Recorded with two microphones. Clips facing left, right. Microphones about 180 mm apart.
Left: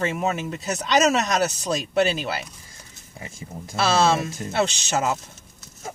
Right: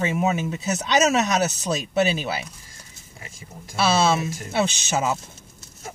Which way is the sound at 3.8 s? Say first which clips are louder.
Even; 5° right (ahead or behind).